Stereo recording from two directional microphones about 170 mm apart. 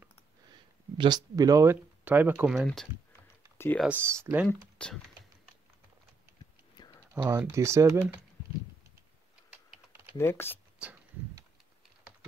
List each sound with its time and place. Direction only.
0.5 s speech: 25° right (ahead or behind); by 2.9 s centre (ahead or behind)
3.5 s computer keyboard: 15° left (ahead or behind)
3.8 s speech: 15° right (ahead or behind)
4.5 s speech: 5° left (ahead or behind)
7.2 s speech: 15° right (ahead or behind)
10.1 s speech: 15° left (ahead or behind)
10.8 s a sound: 10° right (ahead or behind)